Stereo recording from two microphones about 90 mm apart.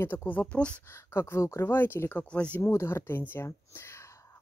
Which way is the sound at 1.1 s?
30° left (ahead or behind).